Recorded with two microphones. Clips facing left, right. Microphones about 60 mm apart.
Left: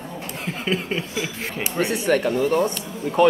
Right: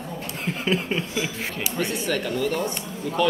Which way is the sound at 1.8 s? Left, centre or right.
Left.